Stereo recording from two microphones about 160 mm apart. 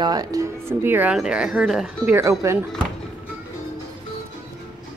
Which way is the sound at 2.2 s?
20° right (ahead or behind).